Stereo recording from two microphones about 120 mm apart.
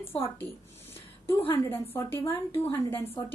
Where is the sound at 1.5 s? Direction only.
20° left (ahead or behind).